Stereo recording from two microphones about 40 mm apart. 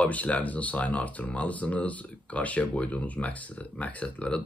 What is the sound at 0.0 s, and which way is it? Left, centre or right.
Speech, left.